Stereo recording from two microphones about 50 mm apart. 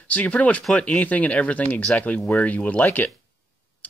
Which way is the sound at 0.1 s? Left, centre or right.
Left.